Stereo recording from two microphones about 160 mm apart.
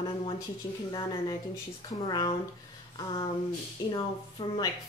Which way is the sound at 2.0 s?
25° left (ahead or behind).